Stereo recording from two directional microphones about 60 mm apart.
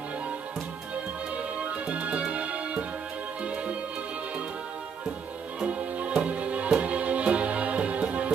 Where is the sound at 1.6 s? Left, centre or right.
Right.